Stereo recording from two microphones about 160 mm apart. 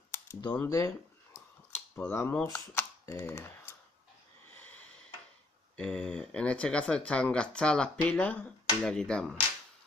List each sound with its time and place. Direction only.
0.6 s speech: 20° left (ahead or behind)
4.6 s a sound: 10° left (ahead or behind)
5.8 s speech: 5° left (ahead or behind)